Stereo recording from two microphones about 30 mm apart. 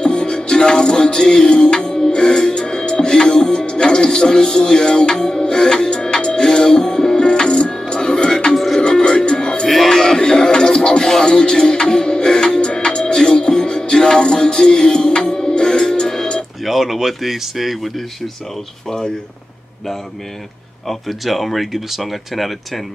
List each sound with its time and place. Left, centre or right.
0.0 s music: left
8.5 s music: centre
8.8 s music: left
16.6 s speech: centre
21.3 s speech: centre